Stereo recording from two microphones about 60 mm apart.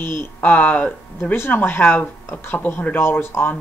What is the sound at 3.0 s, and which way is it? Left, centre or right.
Speech, left.